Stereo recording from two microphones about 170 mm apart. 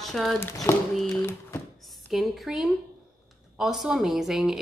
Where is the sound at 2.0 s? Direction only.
Centre (ahead or behind).